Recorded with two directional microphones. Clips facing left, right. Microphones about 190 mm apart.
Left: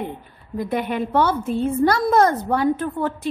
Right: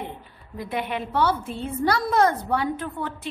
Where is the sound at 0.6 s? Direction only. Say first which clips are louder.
Left 6 dB; 45° left (ahead or behind).